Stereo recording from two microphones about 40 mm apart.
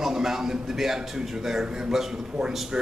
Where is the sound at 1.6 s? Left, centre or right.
Right.